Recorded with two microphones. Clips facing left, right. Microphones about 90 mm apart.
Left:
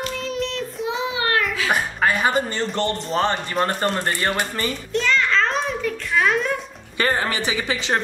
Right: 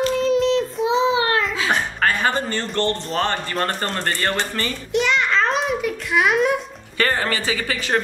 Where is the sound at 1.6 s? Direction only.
10° left (ahead or behind).